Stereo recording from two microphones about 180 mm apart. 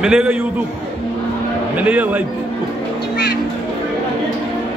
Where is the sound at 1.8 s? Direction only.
10° right (ahead or behind).